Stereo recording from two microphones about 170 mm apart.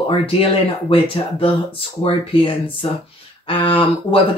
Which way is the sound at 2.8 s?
30° left (ahead or behind).